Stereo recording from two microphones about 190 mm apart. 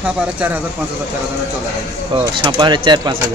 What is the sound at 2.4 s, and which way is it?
Speech, 25° right (ahead or behind).